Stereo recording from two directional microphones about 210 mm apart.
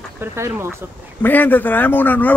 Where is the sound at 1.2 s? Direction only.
10° left (ahead or behind).